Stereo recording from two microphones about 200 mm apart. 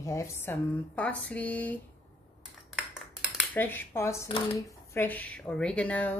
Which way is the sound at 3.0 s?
Centre (ahead or behind).